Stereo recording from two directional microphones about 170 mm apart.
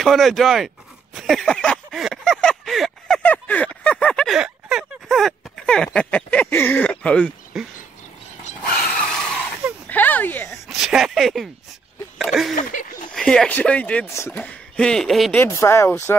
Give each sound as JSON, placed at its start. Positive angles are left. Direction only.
{"t": 0.0, "sound": "speech", "side_deg": 0}
{"t": 1.1, "sound": "a sound", "side_deg": 0}
{"t": 5.9, "sound": "speech", "side_deg": 10}
{"t": 8.7, "sound": "vehicle", "side_deg": 5}
{"t": 9.8, "sound": "a sound", "side_deg": 10}
{"t": 10.7, "sound": "speech", "side_deg": 0}
{"t": 12.5, "sound": "a sound", "side_deg": 50}
{"t": 13.1, "sound": "speech", "side_deg": 5}
{"t": 15.4, "sound": "speech", "side_deg": 15}